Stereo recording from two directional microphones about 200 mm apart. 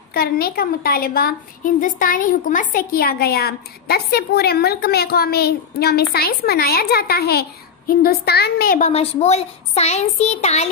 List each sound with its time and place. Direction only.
0.1 s a woman's voice: 50° left (ahead or behind); by 10.7 s 35° left (ahead or behind)